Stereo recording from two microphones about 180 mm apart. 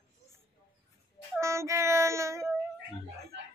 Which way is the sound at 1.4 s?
15° right (ahead or behind).